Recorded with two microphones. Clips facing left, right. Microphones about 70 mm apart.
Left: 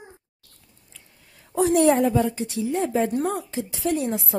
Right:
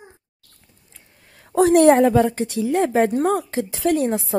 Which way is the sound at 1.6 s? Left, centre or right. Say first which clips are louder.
Right 5 dB; right.